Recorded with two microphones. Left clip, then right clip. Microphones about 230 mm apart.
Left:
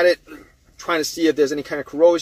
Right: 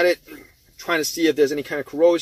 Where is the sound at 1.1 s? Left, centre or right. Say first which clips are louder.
Even; centre.